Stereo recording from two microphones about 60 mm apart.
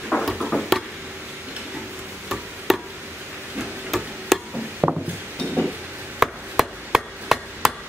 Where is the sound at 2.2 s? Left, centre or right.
Centre.